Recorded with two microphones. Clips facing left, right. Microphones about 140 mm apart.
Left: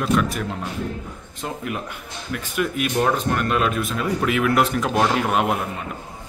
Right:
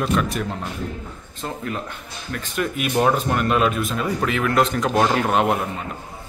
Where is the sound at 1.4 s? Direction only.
10° left (ahead or behind).